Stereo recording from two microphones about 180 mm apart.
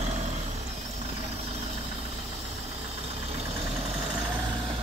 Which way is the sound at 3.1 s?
35° right (ahead or behind).